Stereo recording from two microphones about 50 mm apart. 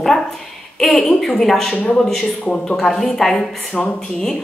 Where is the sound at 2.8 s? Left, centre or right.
Centre.